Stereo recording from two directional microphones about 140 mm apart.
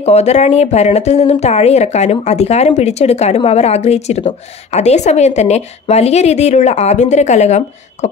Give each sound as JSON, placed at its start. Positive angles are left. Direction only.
{"t": 0.0, "sound": "a woman's voice", "side_deg": 50}